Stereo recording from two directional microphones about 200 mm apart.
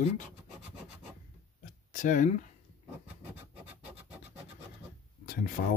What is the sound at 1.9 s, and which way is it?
Speech, 40° left (ahead or behind).